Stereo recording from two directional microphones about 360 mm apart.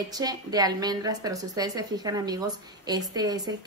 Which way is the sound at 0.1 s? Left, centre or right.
Centre.